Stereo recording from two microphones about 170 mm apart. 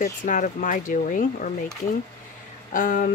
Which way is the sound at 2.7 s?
50° left (ahead or behind).